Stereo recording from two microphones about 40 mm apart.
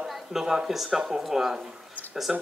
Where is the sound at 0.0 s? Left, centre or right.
Centre.